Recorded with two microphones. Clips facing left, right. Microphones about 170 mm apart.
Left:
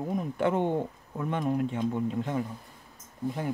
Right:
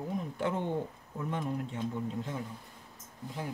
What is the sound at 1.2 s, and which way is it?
Speech, 70° left (ahead or behind).